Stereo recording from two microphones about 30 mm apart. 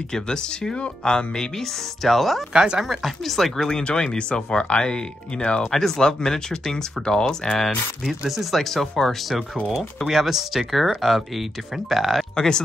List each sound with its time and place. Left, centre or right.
0.1 s speech: left
2.0 s speech: centre
2.5 s speech: right
2.9 s speech: centre
3.3 s speech: centre; by 5.6 s left
5.7 s speech: centre
8.3 s speech: centre
8.5 s speech: centre
9.7 s speech: centre
12.4 s speech: left